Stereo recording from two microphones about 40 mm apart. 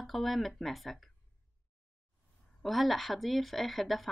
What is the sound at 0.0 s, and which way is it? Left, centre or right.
Speech, centre.